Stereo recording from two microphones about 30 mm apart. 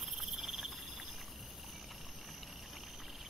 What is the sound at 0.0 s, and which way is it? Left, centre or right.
Cricket, centre.